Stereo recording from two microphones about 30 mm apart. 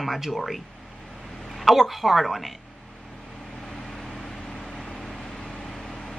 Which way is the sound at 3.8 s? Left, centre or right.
Centre.